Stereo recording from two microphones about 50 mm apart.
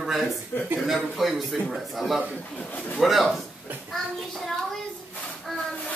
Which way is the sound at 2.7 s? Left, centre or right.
Left.